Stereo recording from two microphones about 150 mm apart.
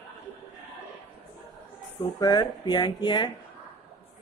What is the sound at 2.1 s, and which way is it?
Speech, 25° left (ahead or behind).